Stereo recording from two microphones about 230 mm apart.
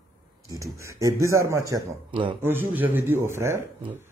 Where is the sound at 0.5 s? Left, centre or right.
Centre.